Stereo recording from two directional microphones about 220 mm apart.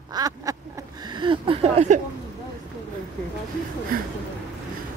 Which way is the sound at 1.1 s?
20° right (ahead or behind).